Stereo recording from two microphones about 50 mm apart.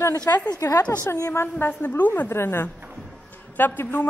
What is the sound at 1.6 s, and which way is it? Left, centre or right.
Speech, left.